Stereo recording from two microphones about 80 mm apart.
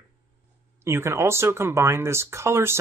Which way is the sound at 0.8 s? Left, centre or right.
Right.